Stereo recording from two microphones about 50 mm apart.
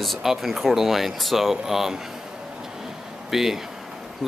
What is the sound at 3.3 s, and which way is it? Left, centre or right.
Speech, centre.